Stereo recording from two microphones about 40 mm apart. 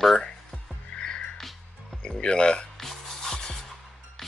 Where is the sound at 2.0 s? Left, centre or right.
Left.